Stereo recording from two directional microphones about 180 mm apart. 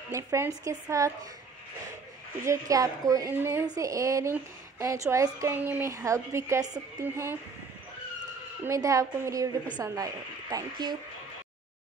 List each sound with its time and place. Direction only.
0.1 s a woman's voice: 15° right (ahead or behind)
2.4 s a woman's voice: 20° right (ahead or behind)
8.6 s a woman's voice: 20° right (ahead or behind)